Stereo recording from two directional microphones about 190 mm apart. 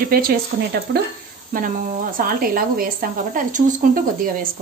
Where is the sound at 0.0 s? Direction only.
50° right (ahead or behind).